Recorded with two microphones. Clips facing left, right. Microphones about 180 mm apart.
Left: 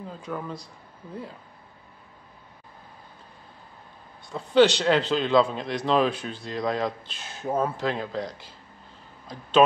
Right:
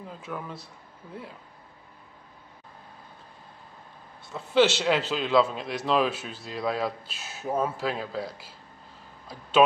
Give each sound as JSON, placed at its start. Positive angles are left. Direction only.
{"t": 0.2, "sound": "speech", "side_deg": -5}
{"t": 4.3, "sound": "speech", "side_deg": -5}